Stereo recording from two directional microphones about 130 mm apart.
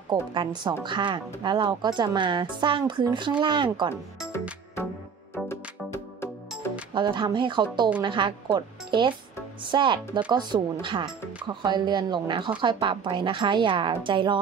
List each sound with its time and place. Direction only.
0.1 s speech: 35° right (ahead or behind)
5.3 s music: 20° left (ahead or behind)
6.9 s speech: 35° right (ahead or behind)